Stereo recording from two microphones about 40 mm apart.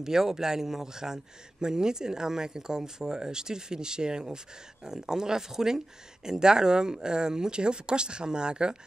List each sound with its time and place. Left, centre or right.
0.0 s speech: centre